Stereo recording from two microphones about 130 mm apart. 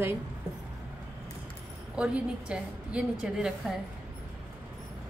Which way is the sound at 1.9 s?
10° right (ahead or behind).